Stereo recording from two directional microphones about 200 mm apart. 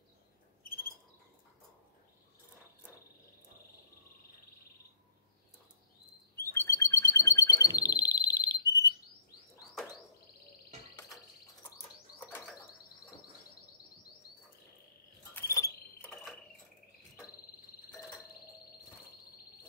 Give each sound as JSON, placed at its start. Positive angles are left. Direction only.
{"t": 6.3, "sound": "bird", "side_deg": 15}
{"t": 12.2, "sound": "bird", "side_deg": 10}
{"t": 15.3, "sound": "a sound", "side_deg": 15}